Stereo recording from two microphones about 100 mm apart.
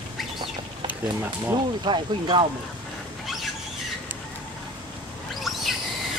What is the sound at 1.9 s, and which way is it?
Speech, 55° right (ahead or behind).